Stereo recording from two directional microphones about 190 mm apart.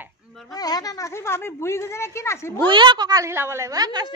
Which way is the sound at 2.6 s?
25° right (ahead or behind).